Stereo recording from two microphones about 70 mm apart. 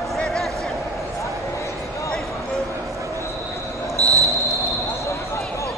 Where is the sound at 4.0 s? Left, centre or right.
Right.